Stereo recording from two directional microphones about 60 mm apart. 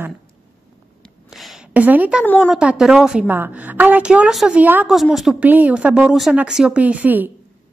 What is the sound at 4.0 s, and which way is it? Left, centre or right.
Speech, centre.